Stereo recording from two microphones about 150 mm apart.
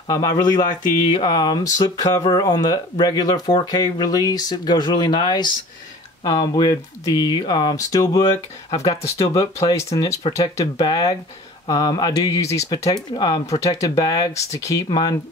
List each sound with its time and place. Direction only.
0.1 s speech: 25° left (ahead or behind)